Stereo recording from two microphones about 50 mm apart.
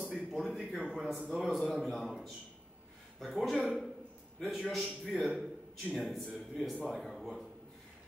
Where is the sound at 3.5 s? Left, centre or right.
Right.